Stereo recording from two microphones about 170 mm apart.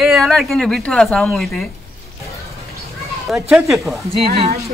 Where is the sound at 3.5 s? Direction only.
Centre (ahead or behind).